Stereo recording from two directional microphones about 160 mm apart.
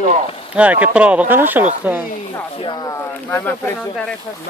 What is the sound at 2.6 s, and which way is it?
Speech, 30° left (ahead or behind).